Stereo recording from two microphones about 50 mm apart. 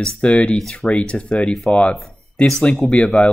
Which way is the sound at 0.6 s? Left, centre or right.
Centre.